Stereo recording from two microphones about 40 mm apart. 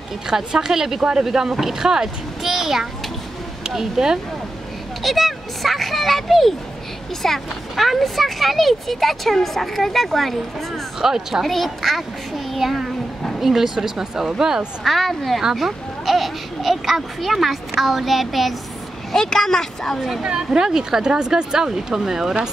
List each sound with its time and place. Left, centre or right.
0.3 s speech: centre
5.0 s speech: centre
11.0 s speech: centre
11.4 s a child's voice: centre
14.8 s speech: centre
19.1 s speech: centre
20.0 s speech: centre